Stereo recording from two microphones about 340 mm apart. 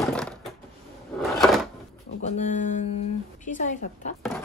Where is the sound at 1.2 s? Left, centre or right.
Centre.